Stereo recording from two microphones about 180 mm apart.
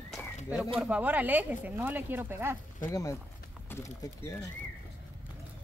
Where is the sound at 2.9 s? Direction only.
15° left (ahead or behind).